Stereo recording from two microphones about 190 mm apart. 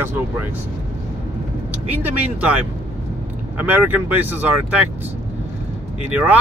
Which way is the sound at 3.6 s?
10° right (ahead or behind).